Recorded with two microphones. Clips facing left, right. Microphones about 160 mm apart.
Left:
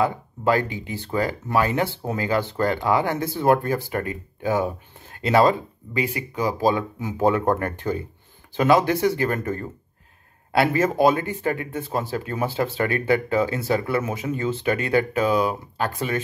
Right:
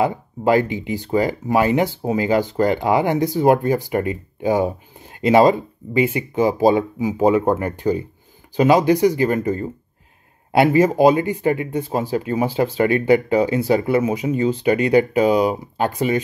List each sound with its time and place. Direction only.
0.0 s speech: 20° right (ahead or behind)